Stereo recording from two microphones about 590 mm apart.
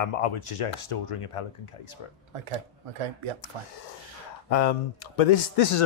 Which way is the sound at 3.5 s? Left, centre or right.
Right.